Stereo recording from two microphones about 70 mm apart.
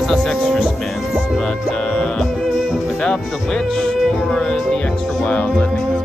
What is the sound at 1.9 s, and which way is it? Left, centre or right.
Music, centre.